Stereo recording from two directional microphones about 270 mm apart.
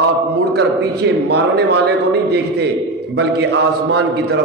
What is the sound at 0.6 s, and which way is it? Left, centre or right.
A man's voice, right.